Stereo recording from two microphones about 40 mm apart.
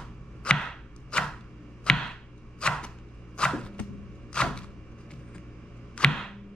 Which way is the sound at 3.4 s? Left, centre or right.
Left.